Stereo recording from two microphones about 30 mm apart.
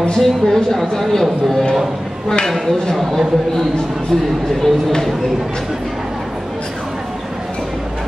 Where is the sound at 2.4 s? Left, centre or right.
Centre.